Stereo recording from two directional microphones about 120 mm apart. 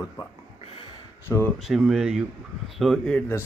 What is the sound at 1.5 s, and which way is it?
Speech, 5° right (ahead or behind).